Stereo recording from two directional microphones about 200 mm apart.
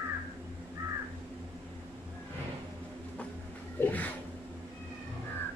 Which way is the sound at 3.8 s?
10° left (ahead or behind).